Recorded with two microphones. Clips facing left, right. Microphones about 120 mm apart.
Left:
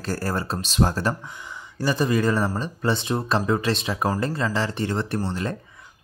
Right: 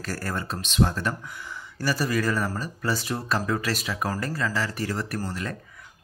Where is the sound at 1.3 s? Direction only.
20° left (ahead or behind).